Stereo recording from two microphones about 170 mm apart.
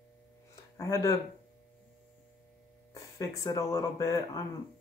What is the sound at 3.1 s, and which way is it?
Speech, 20° left (ahead or behind).